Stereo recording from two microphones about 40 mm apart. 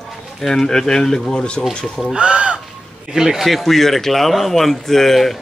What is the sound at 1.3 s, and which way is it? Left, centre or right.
Speech, left.